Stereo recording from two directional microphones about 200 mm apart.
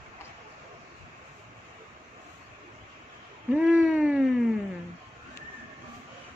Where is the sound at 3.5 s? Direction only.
5° right (ahead or behind).